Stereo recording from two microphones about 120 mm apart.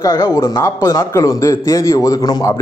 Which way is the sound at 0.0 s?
25° left (ahead or behind).